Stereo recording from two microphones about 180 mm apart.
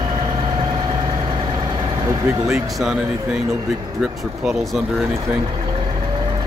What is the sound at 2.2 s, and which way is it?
Speech, 5° right (ahead or behind).